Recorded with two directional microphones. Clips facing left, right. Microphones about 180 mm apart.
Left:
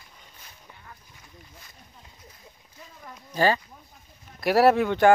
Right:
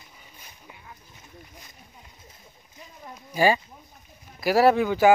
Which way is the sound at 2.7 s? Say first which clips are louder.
Right 2 dB; 20° right (ahead or behind).